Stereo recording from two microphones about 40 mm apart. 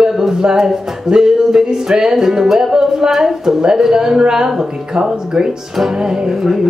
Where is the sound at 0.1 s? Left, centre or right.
Centre.